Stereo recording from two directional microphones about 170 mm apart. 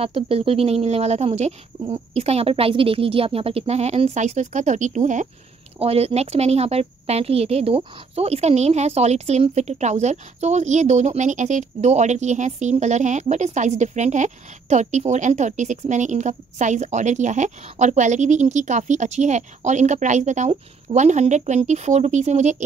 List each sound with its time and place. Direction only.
0.0 s speech: 35° right (ahead or behind)
5.8 s speech: 35° right (ahead or behind)